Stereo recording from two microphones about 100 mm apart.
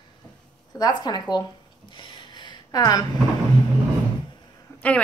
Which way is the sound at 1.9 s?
50° left (ahead or behind).